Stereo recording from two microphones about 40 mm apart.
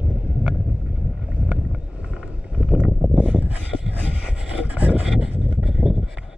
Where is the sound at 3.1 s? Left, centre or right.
Right.